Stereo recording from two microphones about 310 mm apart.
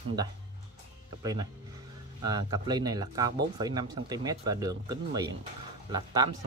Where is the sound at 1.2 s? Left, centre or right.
Centre.